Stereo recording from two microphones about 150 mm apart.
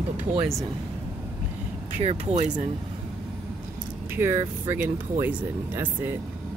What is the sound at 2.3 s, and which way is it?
Speech, 45° right (ahead or behind).